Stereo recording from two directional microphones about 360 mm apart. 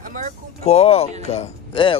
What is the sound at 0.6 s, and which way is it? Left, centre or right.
Speech, centre.